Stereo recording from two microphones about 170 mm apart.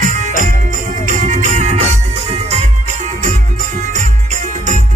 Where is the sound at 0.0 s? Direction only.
50° right (ahead or behind).